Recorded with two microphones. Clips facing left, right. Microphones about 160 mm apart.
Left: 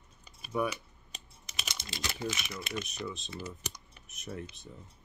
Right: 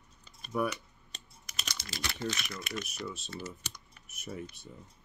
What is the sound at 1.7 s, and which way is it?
Typing, 20° left (ahead or behind).